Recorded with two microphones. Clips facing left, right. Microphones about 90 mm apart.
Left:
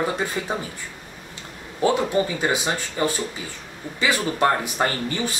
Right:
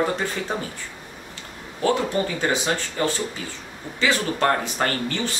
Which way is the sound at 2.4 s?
15° left (ahead or behind).